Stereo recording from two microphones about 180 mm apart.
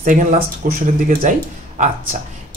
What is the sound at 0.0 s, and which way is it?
Speech, 45° right (ahead or behind).